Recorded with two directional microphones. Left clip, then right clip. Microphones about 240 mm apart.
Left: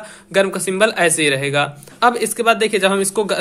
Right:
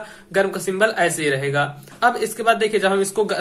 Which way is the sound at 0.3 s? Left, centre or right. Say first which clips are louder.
Left 3 dB; left.